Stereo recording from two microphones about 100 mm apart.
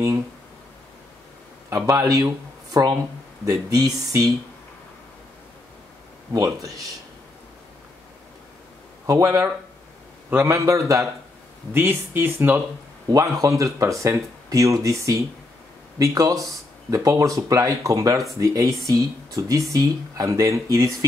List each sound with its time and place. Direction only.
1.7 s speech: 30° right (ahead or behind)
6.3 s speech: 35° right (ahead or behind)
9.0 s speech: 35° right (ahead or behind)
13.1 s speech: 35° right (ahead or behind)